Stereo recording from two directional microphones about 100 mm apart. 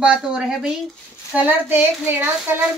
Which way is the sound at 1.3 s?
20° right (ahead or behind).